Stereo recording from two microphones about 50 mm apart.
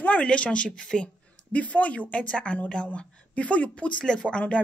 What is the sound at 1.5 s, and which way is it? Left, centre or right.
Speech, left.